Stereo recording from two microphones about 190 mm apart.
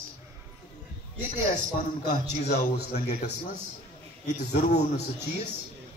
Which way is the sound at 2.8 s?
55° left (ahead or behind).